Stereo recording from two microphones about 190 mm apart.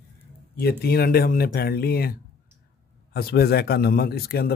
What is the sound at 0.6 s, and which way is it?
A man's voice, 55° left (ahead or behind).